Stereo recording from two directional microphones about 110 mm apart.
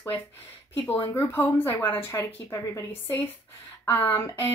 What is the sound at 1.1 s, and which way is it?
Speech, 20° left (ahead or behind).